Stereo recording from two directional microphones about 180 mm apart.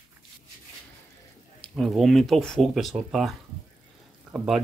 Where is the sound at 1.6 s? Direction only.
Centre (ahead or behind).